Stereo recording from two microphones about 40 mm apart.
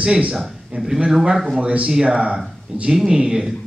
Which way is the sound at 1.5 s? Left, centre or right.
Right.